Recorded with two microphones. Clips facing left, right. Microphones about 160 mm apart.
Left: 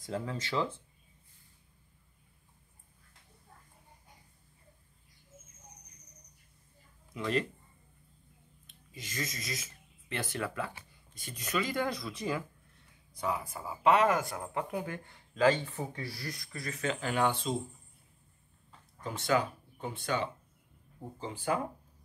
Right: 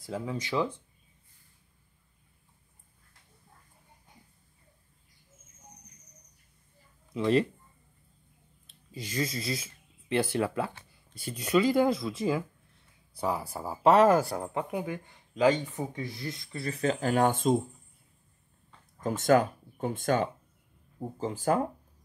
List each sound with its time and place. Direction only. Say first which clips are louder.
0.0 s speech: right 2 dB; 10° right (ahead or behind)
8.6 s a sound: right 7 dB; 30° right (ahead or behind)
10.3 s speech: right 7 dB; 30° right (ahead or behind)
13.1 s speech: right 4 dB; 30° right (ahead or behind)
14.5 s speech: right 3 dB; 20° right (ahead or behind); by 17.6 s 45° right (ahead or behind)
18.9 s speech: right 7 dB; 45° right (ahead or behind)